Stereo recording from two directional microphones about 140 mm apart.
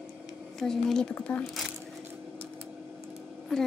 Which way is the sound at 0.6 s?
5° left (ahead or behind).